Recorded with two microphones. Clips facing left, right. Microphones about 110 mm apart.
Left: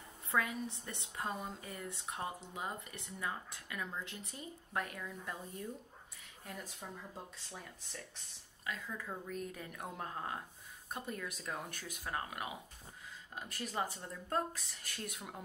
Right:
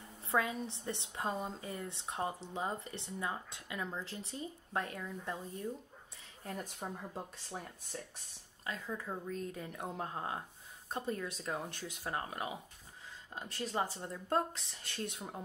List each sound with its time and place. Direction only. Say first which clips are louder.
0.3 s a woman's voice: right 2 dB; 25° right (ahead or behind)
6.4 s speech: right 5 dB; 40° right (ahead or behind)
6.8 s speech: right 5 dB; 50° right (ahead or behind)
8.6 s a woman's voice: right 2 dB; 30° right (ahead or behind)